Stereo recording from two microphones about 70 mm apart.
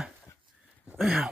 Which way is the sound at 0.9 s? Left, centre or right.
Centre.